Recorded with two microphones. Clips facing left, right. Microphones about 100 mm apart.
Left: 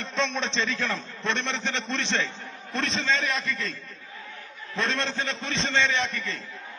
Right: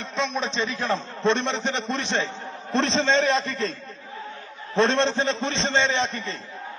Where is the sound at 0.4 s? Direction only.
15° right (ahead or behind).